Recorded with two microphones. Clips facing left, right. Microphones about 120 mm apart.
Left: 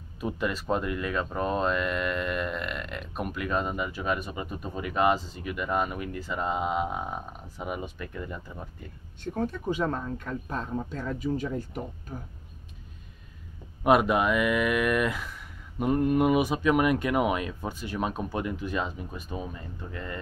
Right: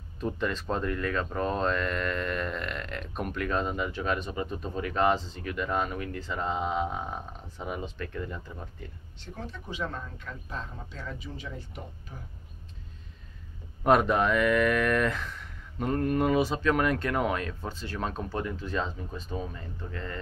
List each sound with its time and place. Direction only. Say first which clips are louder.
0.2 s speech: left 1 dB; 10° left (ahead or behind)
9.2 s speech: left 11 dB; 50° left (ahead or behind)
13.8 s speech: left 1 dB; 10° left (ahead or behind)